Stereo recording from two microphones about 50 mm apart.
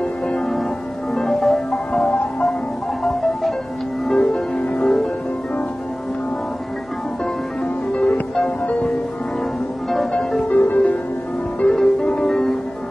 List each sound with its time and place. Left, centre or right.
1.1 s music: centre
3.0 s music: centre
4.2 s music: centre
7.9 s music: left
10.5 s music: left
11.6 s music: centre